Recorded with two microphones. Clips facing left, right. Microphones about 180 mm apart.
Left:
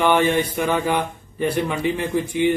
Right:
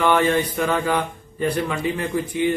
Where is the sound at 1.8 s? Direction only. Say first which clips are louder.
Left 2 dB; 25° left (ahead or behind).